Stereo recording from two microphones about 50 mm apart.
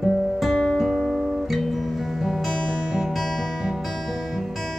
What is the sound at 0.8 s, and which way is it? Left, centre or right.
Guitar, centre.